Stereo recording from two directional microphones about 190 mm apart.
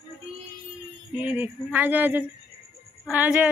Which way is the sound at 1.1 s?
10° right (ahead or behind).